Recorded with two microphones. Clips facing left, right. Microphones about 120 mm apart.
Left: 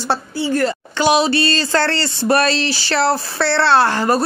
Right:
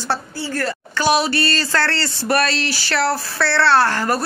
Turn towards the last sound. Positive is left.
turn(degrees=20)  # may be behind; listen again after turning